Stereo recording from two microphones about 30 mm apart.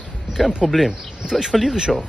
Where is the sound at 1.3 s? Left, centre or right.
Right.